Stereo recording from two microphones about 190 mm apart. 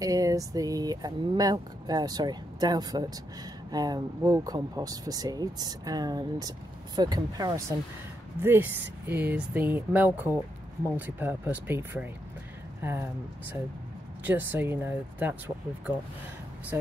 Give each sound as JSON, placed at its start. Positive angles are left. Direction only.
{"t": 0.0, "sound": "speech", "side_deg": -20}